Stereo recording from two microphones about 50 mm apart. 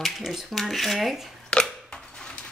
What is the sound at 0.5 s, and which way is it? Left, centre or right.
Speech, centre.